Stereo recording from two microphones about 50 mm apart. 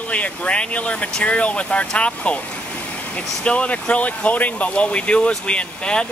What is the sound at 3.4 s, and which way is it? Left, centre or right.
Speech, left.